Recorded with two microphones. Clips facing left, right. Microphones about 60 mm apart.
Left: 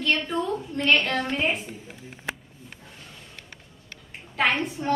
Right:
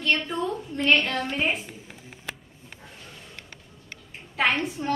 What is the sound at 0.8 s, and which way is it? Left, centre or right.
Speech, centre.